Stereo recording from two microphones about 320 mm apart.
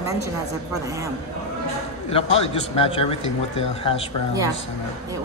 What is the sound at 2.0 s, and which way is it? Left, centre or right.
A man's voice, centre.